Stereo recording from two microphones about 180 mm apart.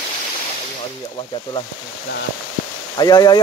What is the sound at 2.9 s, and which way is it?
Speech, 20° left (ahead or behind).